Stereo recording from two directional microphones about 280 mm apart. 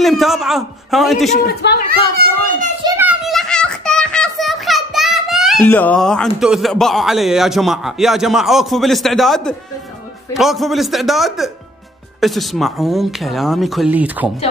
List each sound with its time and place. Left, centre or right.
0.0 s speech: centre
1.3 s speech: left
1.9 s a child's voice: right
2.8 s a sound: centre
10.3 s speech: centre